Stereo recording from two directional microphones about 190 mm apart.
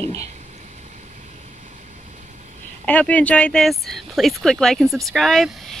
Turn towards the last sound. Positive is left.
turn(degrees=0)  # may be behind; listen again after turning